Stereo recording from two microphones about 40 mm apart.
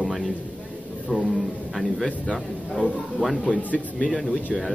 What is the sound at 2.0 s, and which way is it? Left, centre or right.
Speech, centre.